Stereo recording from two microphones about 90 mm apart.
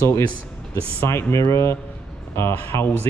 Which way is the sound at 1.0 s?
35° left (ahead or behind).